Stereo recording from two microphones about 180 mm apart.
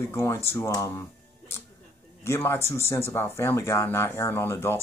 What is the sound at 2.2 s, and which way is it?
Speech, 15° left (ahead or behind).